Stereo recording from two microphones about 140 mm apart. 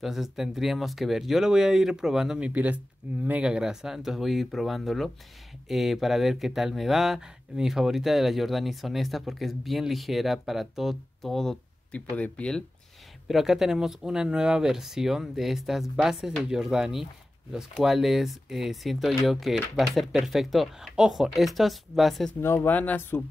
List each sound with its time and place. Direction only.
0.0 s speech: centre (ahead or behind)
22.4 s speech: 15° left (ahead or behind)